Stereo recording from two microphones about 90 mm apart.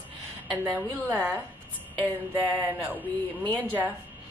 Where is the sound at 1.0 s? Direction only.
25° right (ahead or behind).